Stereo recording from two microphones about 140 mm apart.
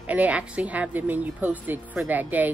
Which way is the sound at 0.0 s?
10° right (ahead or behind).